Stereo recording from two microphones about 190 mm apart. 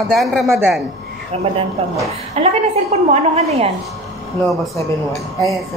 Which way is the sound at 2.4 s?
35° right (ahead or behind).